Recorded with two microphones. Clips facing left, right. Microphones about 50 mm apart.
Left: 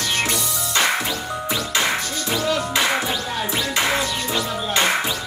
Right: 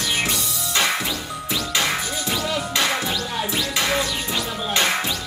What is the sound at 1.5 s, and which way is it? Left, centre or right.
Music, centre.